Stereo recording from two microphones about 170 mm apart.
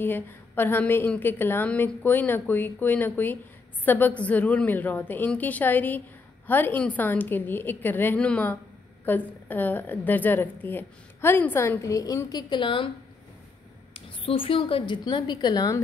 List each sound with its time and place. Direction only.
0.0 s a woman's voice: 10° left (ahead or behind); by 12.9 s 30° left (ahead or behind)
13.9 s a woman's voice: 30° left (ahead or behind)